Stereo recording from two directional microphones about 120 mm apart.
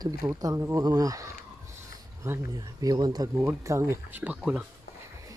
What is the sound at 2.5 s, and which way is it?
Speech, 35° right (ahead or behind).